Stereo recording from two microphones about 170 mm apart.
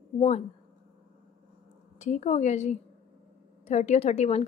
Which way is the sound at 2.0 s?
40° left (ahead or behind).